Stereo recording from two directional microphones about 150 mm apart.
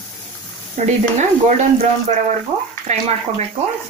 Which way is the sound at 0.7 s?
55° right (ahead or behind).